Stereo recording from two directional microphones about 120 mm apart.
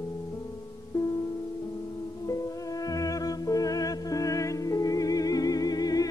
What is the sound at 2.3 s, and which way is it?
Music, 30° left (ahead or behind).